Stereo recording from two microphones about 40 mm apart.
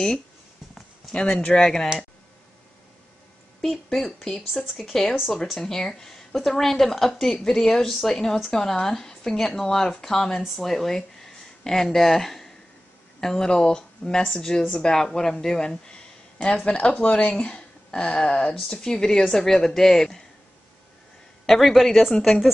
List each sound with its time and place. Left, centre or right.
1.1 s speech: left
1.5 s speech: centre
3.6 s speech: centre
15.9 s a sound: left
16.9 s speech: left; by 20.2 s centre
21.5 s a woman's voice: centre